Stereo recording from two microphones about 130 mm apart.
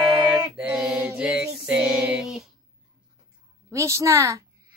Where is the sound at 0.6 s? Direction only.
5° right (ahead or behind).